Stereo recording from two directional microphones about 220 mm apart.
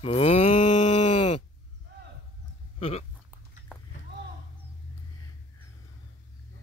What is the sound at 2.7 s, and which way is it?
Speech, 30° left (ahead or behind).